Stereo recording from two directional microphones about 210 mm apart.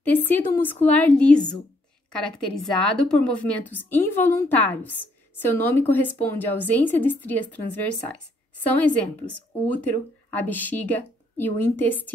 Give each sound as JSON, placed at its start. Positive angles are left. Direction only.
{"t": 0.2, "sound": "speech", "side_deg": 10}